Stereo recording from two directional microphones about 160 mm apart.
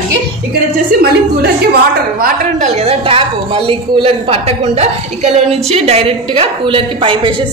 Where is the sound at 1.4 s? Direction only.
75° right (ahead or behind).